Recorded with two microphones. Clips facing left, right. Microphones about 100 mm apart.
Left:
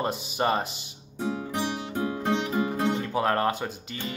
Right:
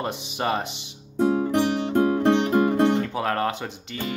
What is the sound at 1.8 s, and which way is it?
Music, 60° right (ahead or behind).